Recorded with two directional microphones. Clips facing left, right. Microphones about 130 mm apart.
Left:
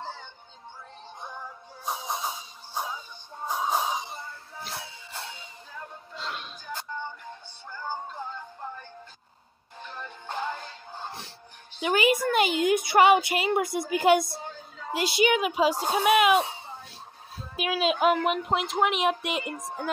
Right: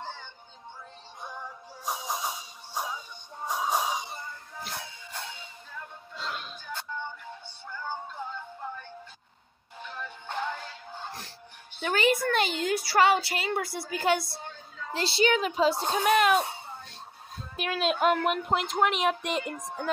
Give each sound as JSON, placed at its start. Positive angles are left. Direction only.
{"t": 0.0, "sound": "music", "side_deg": 5}
{"t": 10.3, "sound": "music", "side_deg": 5}
{"t": 11.9, "sound": "a woman's voice", "side_deg": 10}